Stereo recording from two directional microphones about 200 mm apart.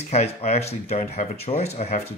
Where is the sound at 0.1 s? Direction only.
35° left (ahead or behind).